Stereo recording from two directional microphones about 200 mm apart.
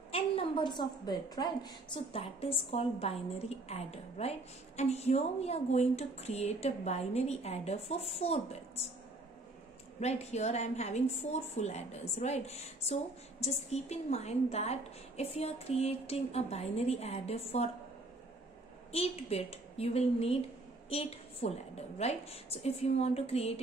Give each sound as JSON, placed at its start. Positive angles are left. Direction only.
{"t": 0.1, "sound": "a woman's voice", "side_deg": 25}
{"t": 9.9, "sound": "a woman's voice", "side_deg": 35}
{"t": 18.9, "sound": "a woman's voice", "side_deg": 30}